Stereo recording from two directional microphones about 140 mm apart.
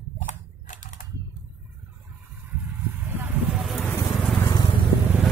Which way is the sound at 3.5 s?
Centre (ahead or behind).